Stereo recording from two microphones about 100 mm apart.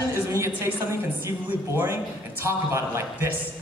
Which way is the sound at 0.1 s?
25° right (ahead or behind).